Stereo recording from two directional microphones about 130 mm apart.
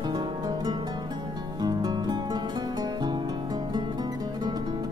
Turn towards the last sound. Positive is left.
turn(degrees=-30)  # may be behind; listen again after turning